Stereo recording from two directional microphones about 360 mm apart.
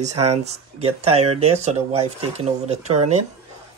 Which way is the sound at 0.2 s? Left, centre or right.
Centre.